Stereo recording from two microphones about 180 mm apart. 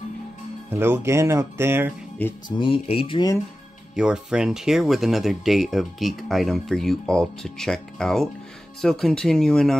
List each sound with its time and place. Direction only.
0.7 s speech: 10° right (ahead or behind)
2.2 s speech: 10° left (ahead or behind)
2.5 s speech: 30° left (ahead or behind)
3.9 s speech: 5° right (ahead or behind)